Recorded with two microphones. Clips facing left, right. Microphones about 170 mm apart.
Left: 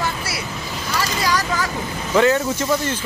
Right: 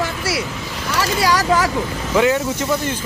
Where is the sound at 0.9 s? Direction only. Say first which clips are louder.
Right 4 dB; 80° right.